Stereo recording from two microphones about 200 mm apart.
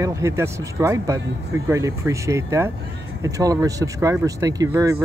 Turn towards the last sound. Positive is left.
turn(degrees=-15)  # may be behind; listen again after turning